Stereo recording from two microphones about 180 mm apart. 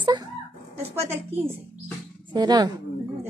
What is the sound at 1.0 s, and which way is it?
A woman's voice, 15° right (ahead or behind).